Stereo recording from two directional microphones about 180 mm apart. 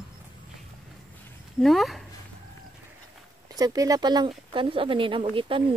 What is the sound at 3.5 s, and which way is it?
Speech, 20° right (ahead or behind).